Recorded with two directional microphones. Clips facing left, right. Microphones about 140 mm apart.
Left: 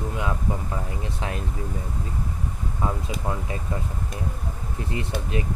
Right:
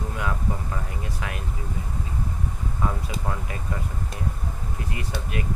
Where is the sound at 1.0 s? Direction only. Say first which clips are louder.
Left 3 dB; 25° left (ahead or behind).